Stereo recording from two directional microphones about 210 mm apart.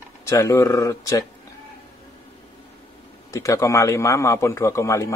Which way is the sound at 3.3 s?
15° left (ahead or behind).